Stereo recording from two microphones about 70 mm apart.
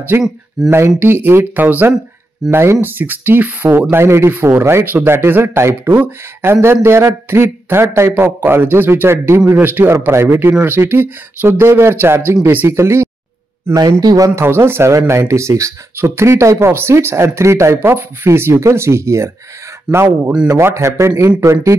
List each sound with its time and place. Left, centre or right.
0.1 s speech: right
2.5 s speech: right
8.1 s speech: right
13.7 s speech: right
14.3 s speech: right
19.9 s speech: centre
20.4 s speech: right